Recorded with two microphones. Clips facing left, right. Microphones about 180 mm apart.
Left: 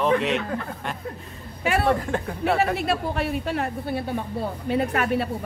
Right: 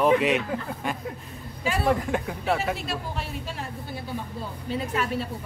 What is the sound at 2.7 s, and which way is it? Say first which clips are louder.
A man's voice: left 8 dB; 60° left (ahead or behind).